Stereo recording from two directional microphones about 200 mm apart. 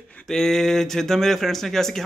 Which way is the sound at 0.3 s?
Centre (ahead or behind).